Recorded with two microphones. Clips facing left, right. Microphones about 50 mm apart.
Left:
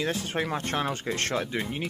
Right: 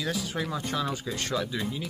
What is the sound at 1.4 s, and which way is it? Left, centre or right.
Speech, left.